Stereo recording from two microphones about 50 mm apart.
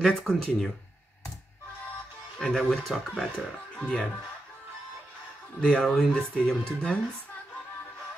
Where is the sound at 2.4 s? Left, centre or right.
Centre.